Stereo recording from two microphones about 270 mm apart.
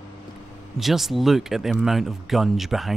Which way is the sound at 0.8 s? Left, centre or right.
Centre.